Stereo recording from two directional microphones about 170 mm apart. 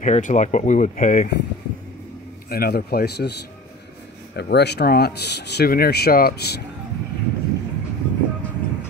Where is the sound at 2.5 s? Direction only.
65° left (ahead or behind).